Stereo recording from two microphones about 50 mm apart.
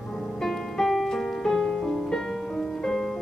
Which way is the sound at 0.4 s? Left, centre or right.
Centre.